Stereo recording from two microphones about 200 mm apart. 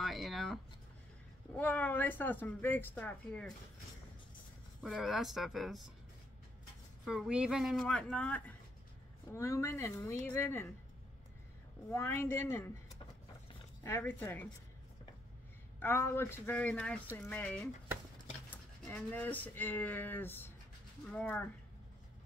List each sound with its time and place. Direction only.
0.0 s a sound: centre (ahead or behind)
1.5 s speech: 10° left (ahead or behind)
4.8 s speech: centre (ahead or behind)
7.1 s speech: 5° right (ahead or behind); by 10.7 s 10° left (ahead or behind)
11.9 s speech: 10° left (ahead or behind)
13.8 s speech: 10° left (ahead or behind)
15.8 s speech: 10° left (ahead or behind)
18.9 s speech: 10° left (ahead or behind)